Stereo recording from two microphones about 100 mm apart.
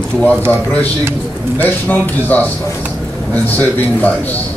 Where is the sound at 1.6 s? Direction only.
15° left (ahead or behind).